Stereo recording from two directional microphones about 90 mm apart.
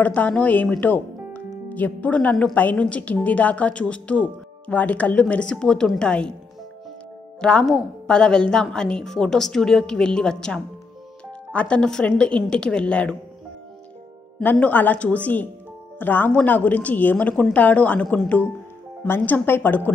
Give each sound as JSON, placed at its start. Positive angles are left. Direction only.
{"t": 0.0, "sound": "a woman's voice", "side_deg": 15}
{"t": 7.3, "sound": "a woman's voice", "side_deg": 10}
{"t": 14.4, "sound": "a woman's voice", "side_deg": 20}